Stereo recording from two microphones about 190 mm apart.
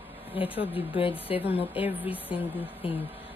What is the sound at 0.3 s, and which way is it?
Speech, 30° left (ahead or behind).